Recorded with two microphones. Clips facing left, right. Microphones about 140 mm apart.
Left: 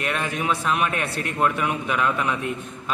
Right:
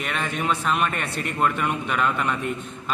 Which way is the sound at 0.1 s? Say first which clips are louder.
Right 1 dB; 5° left (ahead or behind).